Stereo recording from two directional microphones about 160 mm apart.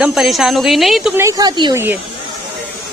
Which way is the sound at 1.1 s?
15° right (ahead or behind).